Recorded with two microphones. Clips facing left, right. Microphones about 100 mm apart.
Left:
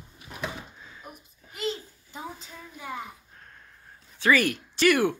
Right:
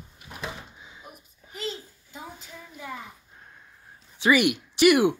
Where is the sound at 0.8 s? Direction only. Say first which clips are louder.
Left 1 dB; 15° right (ahead or behind).